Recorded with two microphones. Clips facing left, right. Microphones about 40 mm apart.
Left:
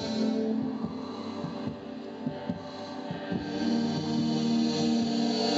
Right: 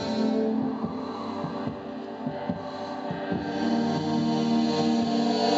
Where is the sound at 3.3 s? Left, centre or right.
Centre.